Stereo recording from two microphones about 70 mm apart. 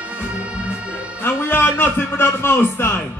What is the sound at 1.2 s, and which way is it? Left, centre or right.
A man's voice, left.